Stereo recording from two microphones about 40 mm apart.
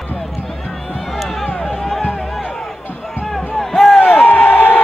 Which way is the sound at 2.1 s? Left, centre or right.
Centre.